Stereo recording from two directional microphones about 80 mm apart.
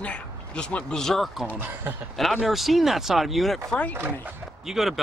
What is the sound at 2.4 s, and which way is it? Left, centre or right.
Speech, centre.